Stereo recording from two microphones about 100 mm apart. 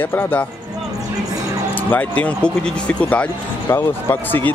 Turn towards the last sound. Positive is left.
turn(degrees=20)  # may be behind; listen again after turning